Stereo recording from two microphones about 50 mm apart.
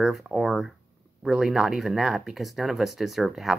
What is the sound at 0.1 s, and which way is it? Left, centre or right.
Speech, centre.